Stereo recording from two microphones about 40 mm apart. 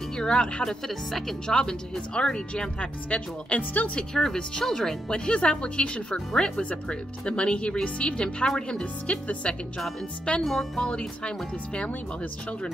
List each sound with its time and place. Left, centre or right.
0.2 s speech: left
0.7 s speech: centre
1.5 s speech: left
4.1 s speech: centre
9.0 s speech: left
10.4 s speech: centre
10.8 s speech: left